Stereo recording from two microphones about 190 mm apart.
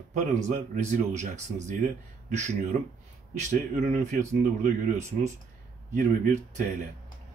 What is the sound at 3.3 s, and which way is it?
A man's voice, 40° right (ahead or behind).